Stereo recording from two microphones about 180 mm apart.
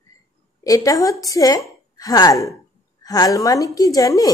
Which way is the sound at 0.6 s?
20° left (ahead or behind).